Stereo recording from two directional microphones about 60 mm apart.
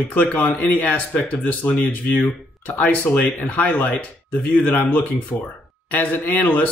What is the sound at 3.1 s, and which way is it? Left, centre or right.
Speech, left.